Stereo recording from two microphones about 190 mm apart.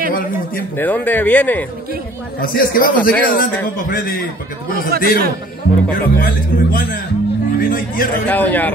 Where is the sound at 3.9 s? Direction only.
50° left (ahead or behind).